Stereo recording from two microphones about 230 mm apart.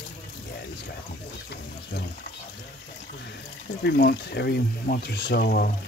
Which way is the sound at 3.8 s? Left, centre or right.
Left.